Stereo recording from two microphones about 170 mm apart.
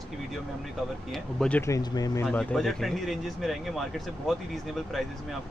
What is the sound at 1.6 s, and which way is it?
Speech, 20° left (ahead or behind).